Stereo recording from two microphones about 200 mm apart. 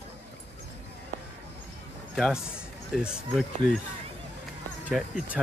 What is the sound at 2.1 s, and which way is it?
Speech, centre (ahead or behind).